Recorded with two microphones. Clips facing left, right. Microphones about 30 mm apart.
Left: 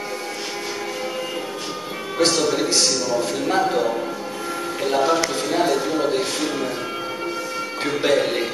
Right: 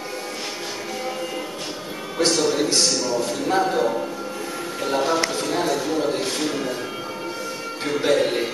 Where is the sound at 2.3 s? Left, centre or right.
Centre.